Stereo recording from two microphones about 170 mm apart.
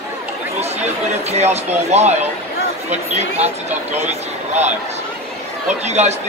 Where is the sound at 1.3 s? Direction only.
40° right (ahead or behind).